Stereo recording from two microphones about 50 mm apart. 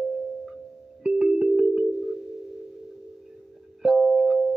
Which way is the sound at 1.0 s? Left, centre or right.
Centre.